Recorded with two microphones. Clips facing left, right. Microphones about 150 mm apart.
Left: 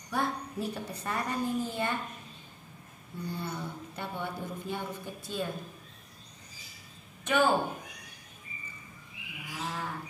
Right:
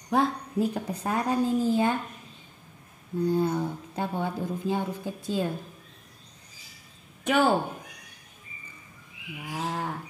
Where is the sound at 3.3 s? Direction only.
90° right.